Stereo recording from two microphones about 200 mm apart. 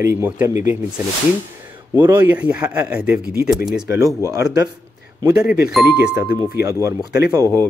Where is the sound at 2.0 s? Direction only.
10° right (ahead or behind).